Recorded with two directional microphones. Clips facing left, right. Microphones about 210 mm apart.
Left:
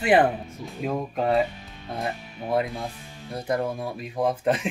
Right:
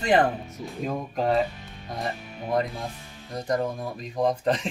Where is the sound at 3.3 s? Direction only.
5° left (ahead or behind).